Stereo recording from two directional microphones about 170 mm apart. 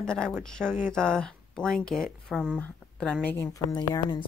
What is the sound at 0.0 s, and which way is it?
Speech, 5° left (ahead or behind).